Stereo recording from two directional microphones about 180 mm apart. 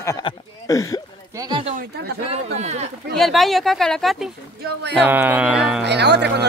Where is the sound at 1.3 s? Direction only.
20° right (ahead or behind).